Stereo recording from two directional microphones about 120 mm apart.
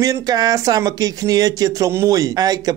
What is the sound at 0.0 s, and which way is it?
A woman's voice, 30° right (ahead or behind).